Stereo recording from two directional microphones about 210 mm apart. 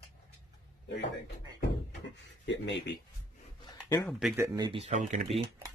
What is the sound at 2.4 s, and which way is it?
Speech, 55° left (ahead or behind).